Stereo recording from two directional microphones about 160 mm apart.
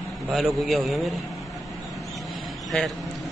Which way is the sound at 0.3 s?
Centre (ahead or behind).